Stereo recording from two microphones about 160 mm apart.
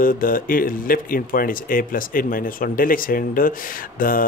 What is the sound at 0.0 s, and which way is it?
Speech, 60° left (ahead or behind).